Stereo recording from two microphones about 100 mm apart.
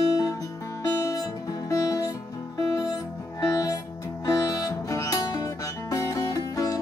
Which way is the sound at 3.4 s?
35° left (ahead or behind).